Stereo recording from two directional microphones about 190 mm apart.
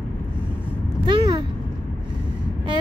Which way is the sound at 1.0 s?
20° right (ahead or behind).